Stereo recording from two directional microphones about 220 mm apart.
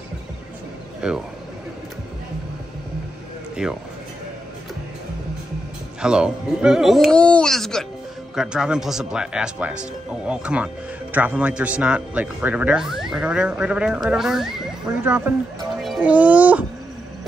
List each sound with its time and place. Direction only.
1.0 s speech: 5° right (ahead or behind)
3.6 s speech: 5° right (ahead or behind)
5.9 s speech: 5° right (ahead or behind)
15.8 s music: 5° right (ahead or behind)